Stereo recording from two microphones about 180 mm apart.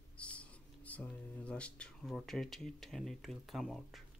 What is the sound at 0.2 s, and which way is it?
Speech, 5° left (ahead or behind).